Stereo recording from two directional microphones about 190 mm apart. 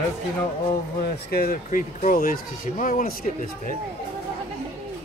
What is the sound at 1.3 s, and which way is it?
Speech, 50° left (ahead or behind).